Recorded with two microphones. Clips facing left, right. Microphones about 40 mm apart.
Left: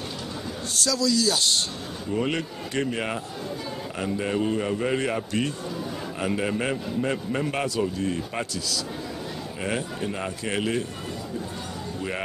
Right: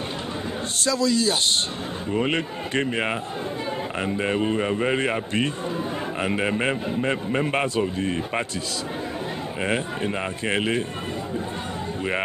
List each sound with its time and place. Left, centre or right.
0.7 s a man's voice: right
9.6 s a man's voice: right